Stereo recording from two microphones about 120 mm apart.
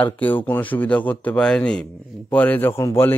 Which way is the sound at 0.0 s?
15° left (ahead or behind).